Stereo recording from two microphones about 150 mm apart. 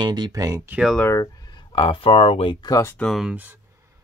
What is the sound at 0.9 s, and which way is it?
Speech, 15° left (ahead or behind).